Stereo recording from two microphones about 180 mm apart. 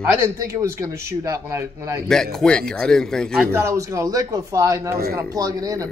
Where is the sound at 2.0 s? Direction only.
Centre (ahead or behind).